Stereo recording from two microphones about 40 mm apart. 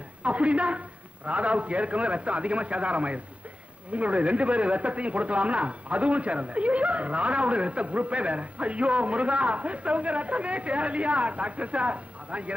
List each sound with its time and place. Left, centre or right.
0.2 s speech: right